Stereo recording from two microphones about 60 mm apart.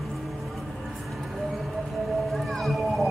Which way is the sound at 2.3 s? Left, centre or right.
Centre.